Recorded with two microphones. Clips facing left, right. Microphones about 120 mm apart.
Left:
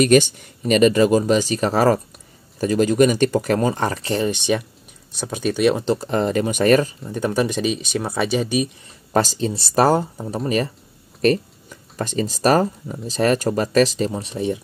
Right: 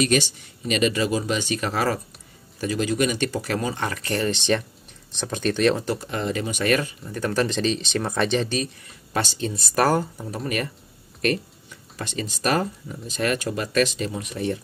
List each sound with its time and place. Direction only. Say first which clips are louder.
0.0 s speech: left 7 dB; 50° left (ahead or behind)
4.0 s speech: left 3 dB; 20° left (ahead or behind)
5.9 s speech: left 6 dB; 35° left (ahead or behind)
7.2 s speech: left 3 dB; 15° left (ahead or behind)
8.8 s speech: left 7 dB; 40° left (ahead or behind)